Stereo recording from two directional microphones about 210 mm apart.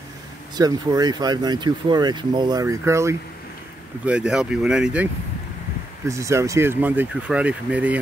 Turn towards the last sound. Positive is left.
turn(degrees=-5)  # may be behind; listen again after turning